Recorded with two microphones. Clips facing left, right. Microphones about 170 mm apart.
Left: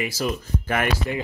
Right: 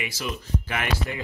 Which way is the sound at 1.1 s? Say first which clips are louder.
Left 5 dB; 25° left (ahead or behind).